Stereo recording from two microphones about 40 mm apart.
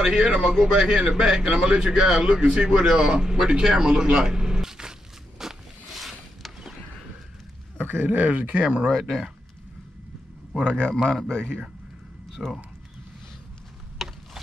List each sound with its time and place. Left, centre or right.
0.0 s a man's voice: centre
5.4 s a sound: centre
7.8 s speech: right
8.8 s speech: centre
10.6 s a man's voice: left
12.4 s speech: centre
14.0 s a sound: centre